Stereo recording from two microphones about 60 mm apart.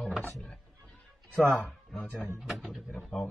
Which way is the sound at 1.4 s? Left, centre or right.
Centre.